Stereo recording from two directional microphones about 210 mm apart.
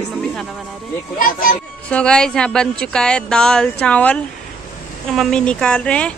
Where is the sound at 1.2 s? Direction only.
40° left (ahead or behind).